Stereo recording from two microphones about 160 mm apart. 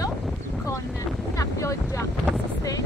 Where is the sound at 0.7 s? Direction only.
20° left (ahead or behind).